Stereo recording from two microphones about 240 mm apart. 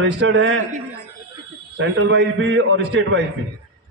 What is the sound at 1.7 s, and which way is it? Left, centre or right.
A man's voice, right.